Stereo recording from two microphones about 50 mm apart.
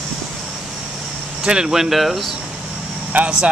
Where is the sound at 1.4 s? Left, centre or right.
Centre.